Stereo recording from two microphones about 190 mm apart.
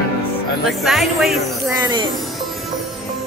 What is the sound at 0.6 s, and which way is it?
Speech, centre (ahead or behind).